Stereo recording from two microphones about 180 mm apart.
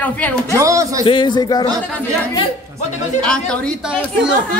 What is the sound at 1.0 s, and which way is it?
Speech, 25° left (ahead or behind).